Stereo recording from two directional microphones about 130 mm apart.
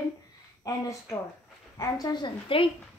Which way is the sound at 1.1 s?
25° left (ahead or behind).